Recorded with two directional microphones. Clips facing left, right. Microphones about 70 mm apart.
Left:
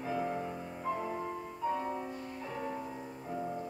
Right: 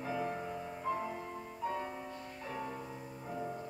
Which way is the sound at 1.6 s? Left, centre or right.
Centre.